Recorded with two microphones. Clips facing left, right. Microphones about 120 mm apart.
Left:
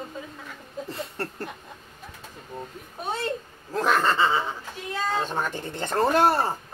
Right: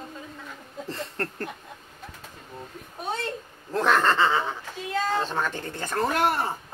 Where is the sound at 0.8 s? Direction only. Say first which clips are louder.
Right 2 dB; 5° left (ahead or behind).